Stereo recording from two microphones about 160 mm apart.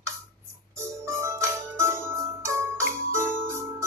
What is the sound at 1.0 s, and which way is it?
Music, 15° right (ahead or behind).